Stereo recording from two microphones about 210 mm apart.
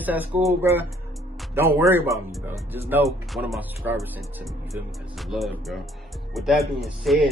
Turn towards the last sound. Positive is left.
turn(degrees=0)  # may be behind; listen again after turning